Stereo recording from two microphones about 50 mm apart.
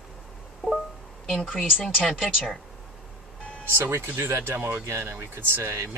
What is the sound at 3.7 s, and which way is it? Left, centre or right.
Speech, right.